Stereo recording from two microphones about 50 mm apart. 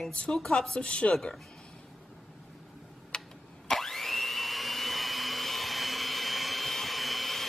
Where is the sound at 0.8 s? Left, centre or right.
Left.